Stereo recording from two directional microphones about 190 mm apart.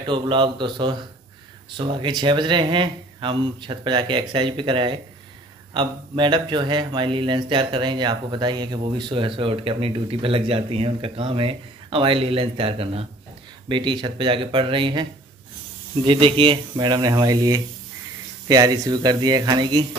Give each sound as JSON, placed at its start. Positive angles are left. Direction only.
{"t": 0.0, "sound": "speech", "side_deg": -25}